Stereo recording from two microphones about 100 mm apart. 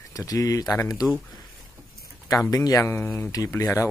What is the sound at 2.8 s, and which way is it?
Speech, 25° left (ahead or behind).